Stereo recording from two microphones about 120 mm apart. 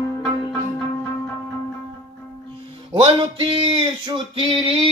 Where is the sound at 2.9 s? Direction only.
45° right (ahead or behind).